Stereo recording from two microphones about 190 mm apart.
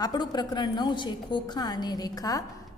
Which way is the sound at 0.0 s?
20° left (ahead or behind).